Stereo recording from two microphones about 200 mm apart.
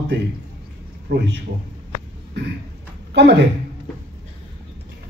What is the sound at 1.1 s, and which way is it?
Speech, 60° right (ahead or behind).